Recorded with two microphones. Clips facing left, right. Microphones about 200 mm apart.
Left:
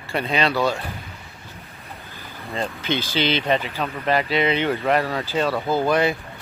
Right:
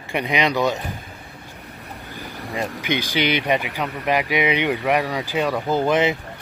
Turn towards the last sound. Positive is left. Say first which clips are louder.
# right 1 dB
turn(degrees=-20)  # may be behind; listen again after turning